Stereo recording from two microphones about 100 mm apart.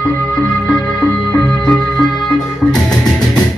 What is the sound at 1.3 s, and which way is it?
Music, 5° left (ahead or behind).